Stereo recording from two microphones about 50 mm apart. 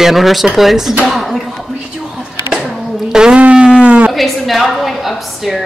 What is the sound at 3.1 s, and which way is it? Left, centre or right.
Speech, centre.